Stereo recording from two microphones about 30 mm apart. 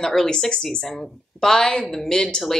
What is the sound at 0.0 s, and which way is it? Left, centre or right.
Speech, centre.